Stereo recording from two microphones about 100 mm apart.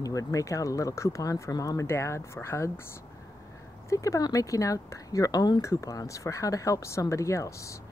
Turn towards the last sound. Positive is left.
turn(degrees=30)  # may be behind; listen again after turning